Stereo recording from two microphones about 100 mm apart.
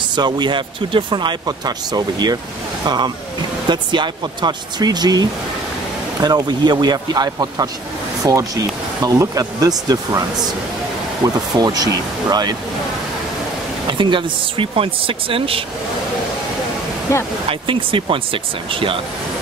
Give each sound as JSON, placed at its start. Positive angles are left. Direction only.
{"t": 0.1, "sound": "speech", "side_deg": -45}
{"t": 1.9, "sound": "speech", "side_deg": -40}
{"t": 11.2, "sound": "speech", "side_deg": -40}
{"t": 13.8, "sound": "speech", "side_deg": -55}
{"t": 17.1, "sound": "speech", "side_deg": 30}
{"t": 17.5, "sound": "speech", "side_deg": -60}